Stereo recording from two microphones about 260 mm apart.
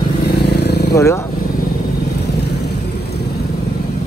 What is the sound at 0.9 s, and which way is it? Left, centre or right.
Speech, centre.